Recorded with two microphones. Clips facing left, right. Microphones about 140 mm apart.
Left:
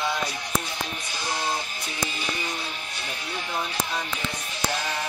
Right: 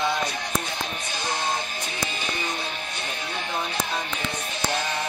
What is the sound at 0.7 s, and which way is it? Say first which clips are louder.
Music: right 2 dB; 60° right (ahead or behind).